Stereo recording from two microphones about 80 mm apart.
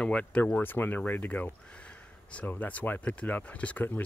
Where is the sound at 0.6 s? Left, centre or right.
Left.